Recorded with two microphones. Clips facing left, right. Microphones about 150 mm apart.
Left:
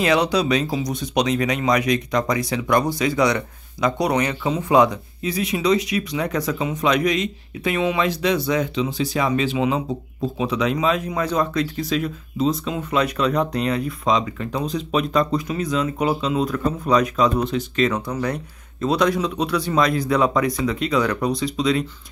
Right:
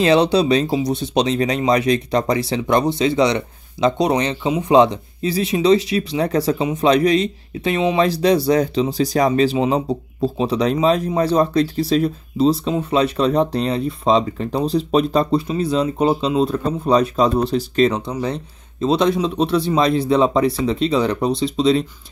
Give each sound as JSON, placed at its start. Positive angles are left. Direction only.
{"t": 0.0, "sound": "speech", "side_deg": -30}